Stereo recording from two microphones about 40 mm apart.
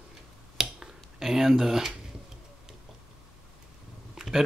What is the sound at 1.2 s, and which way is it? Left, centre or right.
Speech, centre.